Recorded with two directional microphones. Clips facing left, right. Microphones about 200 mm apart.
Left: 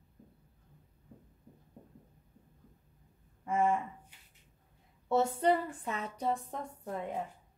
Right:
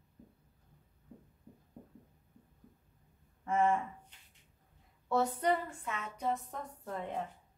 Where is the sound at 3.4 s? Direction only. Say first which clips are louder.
Even; 10° left (ahead or behind).